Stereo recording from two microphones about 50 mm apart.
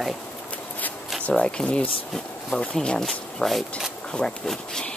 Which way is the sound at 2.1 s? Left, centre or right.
Centre.